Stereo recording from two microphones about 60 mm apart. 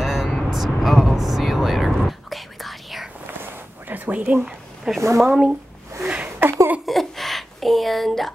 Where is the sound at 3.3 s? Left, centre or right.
Right.